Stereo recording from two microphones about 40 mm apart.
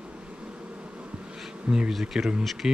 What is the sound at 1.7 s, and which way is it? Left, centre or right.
Speech, right.